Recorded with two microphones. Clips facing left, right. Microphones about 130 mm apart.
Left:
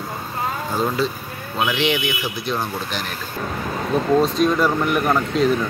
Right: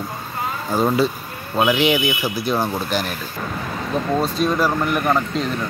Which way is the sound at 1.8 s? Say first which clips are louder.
Right 3 dB; 5° right (ahead or behind).